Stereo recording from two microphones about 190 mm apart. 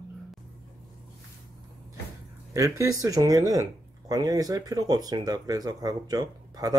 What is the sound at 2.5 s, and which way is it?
Speech, 15° right (ahead or behind).